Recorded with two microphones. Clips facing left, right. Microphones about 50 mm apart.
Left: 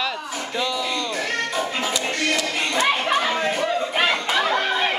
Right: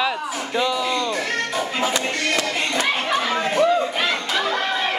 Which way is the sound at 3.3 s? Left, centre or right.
Centre.